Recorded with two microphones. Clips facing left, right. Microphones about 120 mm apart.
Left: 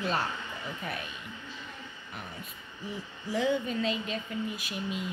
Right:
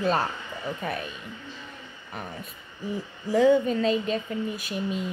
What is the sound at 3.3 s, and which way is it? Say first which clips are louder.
Speech: right 9 dB; 40° right (ahead or behind).